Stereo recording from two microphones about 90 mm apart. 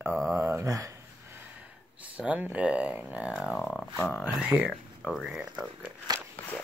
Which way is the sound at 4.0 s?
10° left (ahead or behind).